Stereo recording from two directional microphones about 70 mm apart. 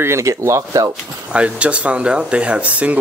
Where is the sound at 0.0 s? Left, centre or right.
Right.